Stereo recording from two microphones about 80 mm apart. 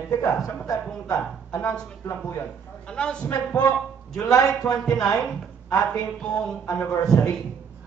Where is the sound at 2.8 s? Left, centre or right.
Centre.